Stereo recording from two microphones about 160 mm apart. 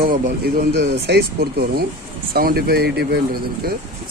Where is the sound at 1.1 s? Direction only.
80° right.